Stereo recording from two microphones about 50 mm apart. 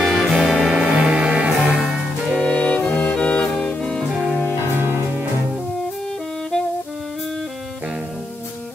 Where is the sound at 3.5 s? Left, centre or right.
Centre.